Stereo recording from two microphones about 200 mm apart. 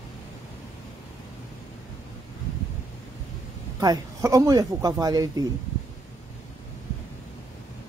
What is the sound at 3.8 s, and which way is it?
A man's voice, 20° right (ahead or behind).